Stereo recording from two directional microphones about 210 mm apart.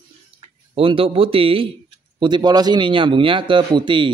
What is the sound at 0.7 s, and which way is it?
Speech, 25° right (ahead or behind).